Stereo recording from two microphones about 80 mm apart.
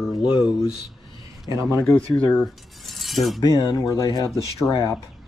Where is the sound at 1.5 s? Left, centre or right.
Right.